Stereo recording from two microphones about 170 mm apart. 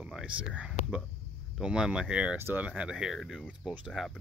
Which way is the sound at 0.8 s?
40° left (ahead or behind).